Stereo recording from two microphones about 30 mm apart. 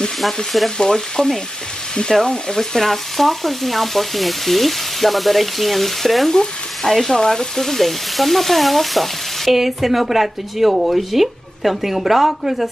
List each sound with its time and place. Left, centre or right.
0.7 s frying: left
6.3 s frying: left
6.9 s frying: centre
7.2 s frying: left; by 9.5 s centre
9.5 s frying: centre